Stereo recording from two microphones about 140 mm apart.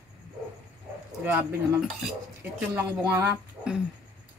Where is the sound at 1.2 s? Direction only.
10° right (ahead or behind).